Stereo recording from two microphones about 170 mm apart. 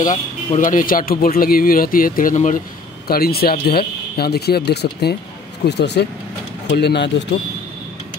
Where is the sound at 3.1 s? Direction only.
65° left (ahead or behind).